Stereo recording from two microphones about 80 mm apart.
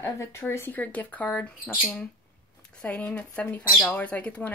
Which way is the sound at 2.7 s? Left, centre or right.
Centre.